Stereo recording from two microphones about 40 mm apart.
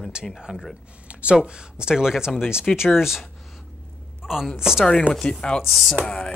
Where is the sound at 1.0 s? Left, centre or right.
Right.